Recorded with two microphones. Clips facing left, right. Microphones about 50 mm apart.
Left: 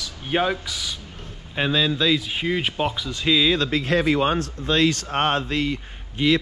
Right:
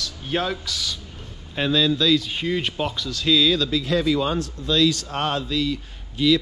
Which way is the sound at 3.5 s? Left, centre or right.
Left.